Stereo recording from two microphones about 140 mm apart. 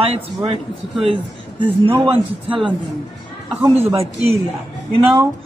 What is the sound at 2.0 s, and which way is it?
Speech, 40° right (ahead or behind).